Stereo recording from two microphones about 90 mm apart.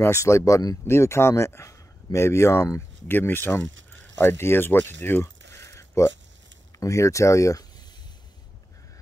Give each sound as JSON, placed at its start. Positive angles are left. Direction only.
{"t": 0.0, "sound": "speech", "side_deg": 30}
{"t": 0.8, "sound": "speech", "side_deg": 30}